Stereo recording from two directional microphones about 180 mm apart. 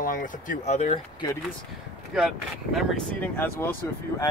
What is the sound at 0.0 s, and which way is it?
Speech, 50° left (ahead or behind).